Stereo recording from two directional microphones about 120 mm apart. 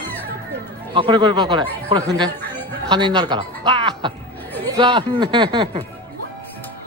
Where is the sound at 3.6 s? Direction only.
40° right (ahead or behind).